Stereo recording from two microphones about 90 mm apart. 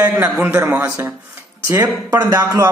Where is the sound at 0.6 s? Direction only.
30° right (ahead or behind).